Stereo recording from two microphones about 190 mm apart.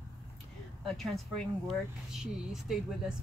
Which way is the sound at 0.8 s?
Centre (ahead or behind).